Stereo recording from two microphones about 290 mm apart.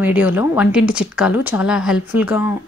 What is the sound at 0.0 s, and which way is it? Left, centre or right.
Speech, centre.